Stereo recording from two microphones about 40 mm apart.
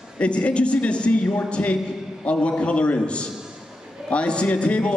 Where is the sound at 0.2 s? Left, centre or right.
Left.